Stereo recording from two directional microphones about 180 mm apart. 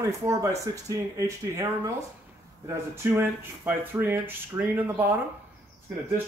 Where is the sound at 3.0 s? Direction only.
10° right (ahead or behind).